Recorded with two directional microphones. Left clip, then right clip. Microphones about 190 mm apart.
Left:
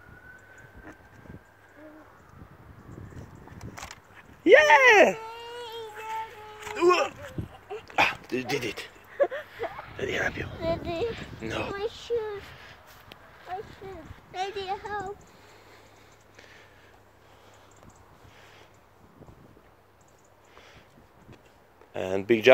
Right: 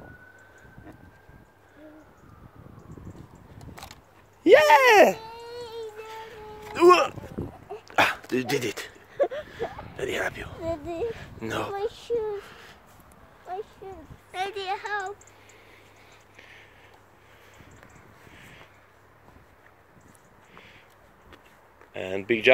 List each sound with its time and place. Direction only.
4.4 s speech: 10° right (ahead or behind)
5.2 s music: 25° right (ahead or behind)
6.7 s a sound: 50° right (ahead or behind)
9.8 s speech: 25° right (ahead or behind)
10.6 s speech: centre (ahead or behind)
11.3 s speech: 40° right (ahead or behind)
14.3 s speech: 20° left (ahead or behind)
16.3 s a sound: 15° left (ahead or behind)
21.9 s speech: 30° left (ahead or behind)